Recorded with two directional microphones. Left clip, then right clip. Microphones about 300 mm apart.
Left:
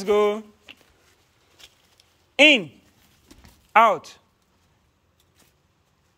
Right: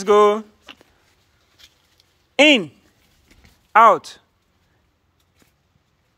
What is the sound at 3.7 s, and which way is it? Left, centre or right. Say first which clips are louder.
Speech: right 5 dB; centre.